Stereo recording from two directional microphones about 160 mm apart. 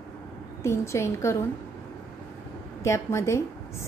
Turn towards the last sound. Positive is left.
turn(degrees=15)  # may be behind; listen again after turning